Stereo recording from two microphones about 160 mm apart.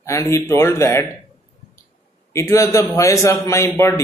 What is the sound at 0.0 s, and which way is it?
A man's voice, 20° left (ahead or behind).